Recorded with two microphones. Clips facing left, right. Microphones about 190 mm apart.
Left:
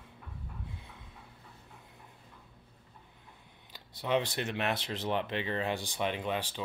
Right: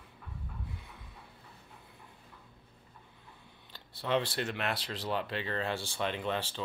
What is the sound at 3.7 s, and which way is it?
Speech, 15° left (ahead or behind).